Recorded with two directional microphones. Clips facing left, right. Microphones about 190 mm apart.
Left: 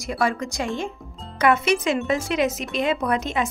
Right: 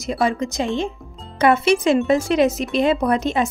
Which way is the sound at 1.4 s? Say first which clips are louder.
Right 4 dB; 30° right (ahead or behind).